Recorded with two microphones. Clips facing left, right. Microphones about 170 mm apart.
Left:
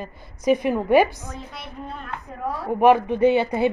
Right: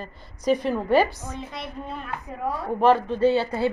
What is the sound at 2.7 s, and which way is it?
Speech, 15° left (ahead or behind).